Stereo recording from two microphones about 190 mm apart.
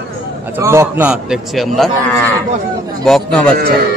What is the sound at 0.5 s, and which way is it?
A man's voice, 15° right (ahead or behind).